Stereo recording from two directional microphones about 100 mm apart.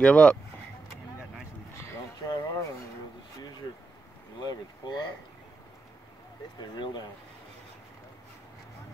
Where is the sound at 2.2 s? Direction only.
40° left (ahead or behind).